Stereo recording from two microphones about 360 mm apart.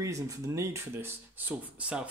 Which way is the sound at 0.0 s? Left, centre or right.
Centre.